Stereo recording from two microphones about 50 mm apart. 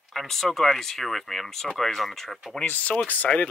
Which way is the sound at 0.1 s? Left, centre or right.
Centre.